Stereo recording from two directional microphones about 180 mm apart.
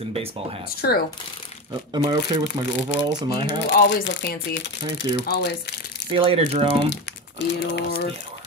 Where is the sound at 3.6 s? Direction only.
80° left.